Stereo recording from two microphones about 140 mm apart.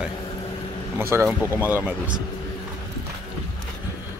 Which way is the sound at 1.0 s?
20° right (ahead or behind).